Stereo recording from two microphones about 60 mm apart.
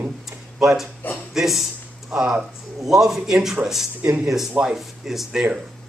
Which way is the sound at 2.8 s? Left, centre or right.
Centre.